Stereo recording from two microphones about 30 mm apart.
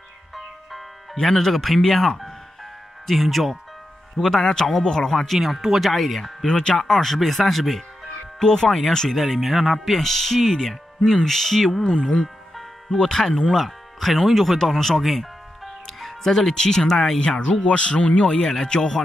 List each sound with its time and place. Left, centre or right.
0.3 s music: centre
1.2 s speech: centre
5.3 s speech: centre
6.4 s speech: left
6.7 s speech: centre
8.4 s speech: centre
9.1 s speech: centre
11.8 s speech: left
12.9 s speech: centre
13.5 s speech: centre
15.0 s music: centre
16.3 s speech: centre
17.5 s speech: left
18.4 s speech: centre